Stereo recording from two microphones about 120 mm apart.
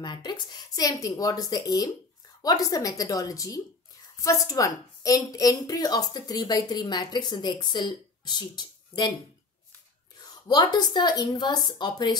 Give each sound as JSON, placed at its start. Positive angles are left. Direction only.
{"t": 0.0, "sound": "a woman's voice", "side_deg": 35}
{"t": 10.1, "sound": "a woman's voice", "side_deg": 35}